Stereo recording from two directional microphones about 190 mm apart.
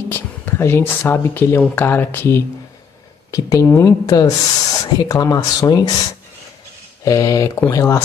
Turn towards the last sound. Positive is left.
turn(degrees=15)  # may be behind; listen again after turning